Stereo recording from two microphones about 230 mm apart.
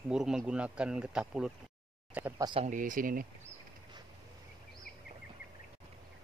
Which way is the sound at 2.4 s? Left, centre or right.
Right.